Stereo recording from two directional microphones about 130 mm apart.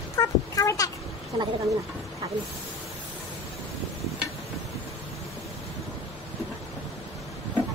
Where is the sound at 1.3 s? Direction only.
35° right (ahead or behind).